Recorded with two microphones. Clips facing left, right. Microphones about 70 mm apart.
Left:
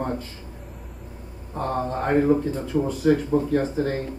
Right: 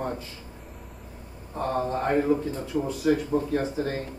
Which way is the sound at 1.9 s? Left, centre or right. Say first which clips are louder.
Left 5 dB; left.